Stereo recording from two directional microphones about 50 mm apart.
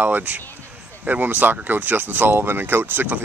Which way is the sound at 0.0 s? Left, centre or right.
Right.